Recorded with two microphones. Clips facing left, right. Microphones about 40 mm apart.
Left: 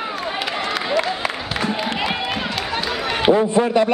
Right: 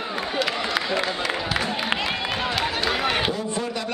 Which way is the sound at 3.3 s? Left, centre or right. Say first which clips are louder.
Left 11 dB; left.